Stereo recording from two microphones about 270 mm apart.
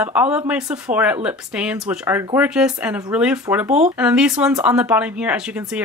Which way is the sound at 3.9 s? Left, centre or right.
Centre.